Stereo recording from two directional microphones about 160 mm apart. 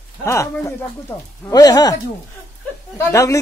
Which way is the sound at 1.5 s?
25° left (ahead or behind).